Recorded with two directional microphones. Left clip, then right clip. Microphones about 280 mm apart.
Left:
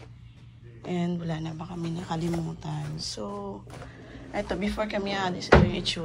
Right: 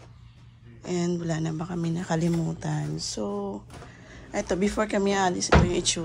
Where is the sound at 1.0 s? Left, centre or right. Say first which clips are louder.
Right 5 dB; right.